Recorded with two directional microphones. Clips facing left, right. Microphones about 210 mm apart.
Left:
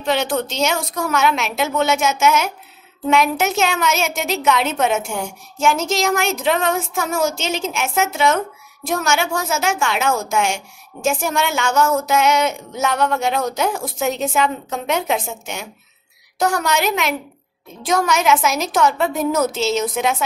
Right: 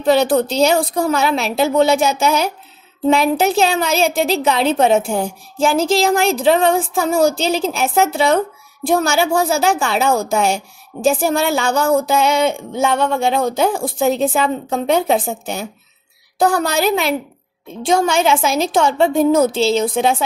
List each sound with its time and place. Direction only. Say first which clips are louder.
0.0 s a woman's voice: right 6 dB; 35° right (ahead or behind)